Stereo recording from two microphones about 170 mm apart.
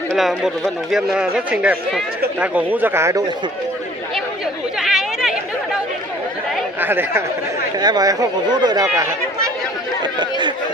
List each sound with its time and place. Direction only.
0.1 s speech: centre (ahead or behind)
4.7 s chatter: 5° right (ahead or behind)
6.8 s speech: 10° right (ahead or behind)